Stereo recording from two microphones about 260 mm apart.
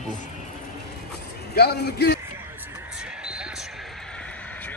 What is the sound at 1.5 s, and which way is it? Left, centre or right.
Speech, left.